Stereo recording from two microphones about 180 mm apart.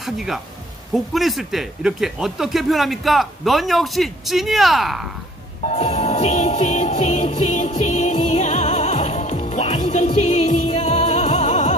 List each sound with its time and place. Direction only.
0.0 s speech: centre (ahead or behind)
5.7 s music: 40° left (ahead or behind)